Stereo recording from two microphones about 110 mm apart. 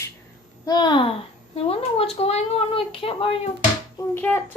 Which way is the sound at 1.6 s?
65° left (ahead or behind).